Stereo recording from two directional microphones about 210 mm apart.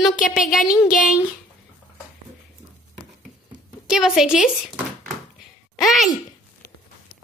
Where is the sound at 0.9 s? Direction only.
40° left (ahead or behind).